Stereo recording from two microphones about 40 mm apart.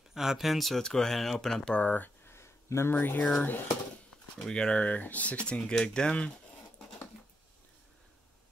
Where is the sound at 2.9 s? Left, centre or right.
Left.